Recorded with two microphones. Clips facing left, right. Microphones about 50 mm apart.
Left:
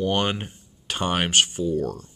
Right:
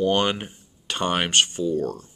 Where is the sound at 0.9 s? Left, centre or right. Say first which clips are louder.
Even; centre.